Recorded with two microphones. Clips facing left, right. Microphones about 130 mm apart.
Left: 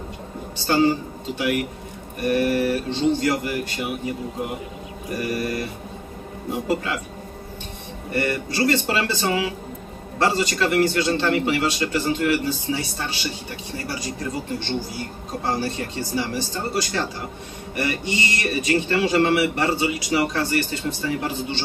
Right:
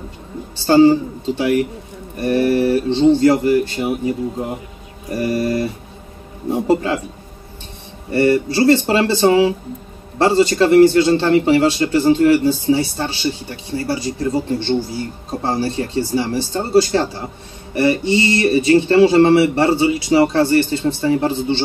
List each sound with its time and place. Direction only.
0.6 s speech: 30° right (ahead or behind)
5.2 s speech: 30° right (ahead or behind)
8.1 s speech: 30° right (ahead or behind)